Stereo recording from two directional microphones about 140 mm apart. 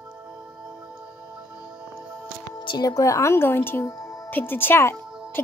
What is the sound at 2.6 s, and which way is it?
Speech, 30° left (ahead or behind).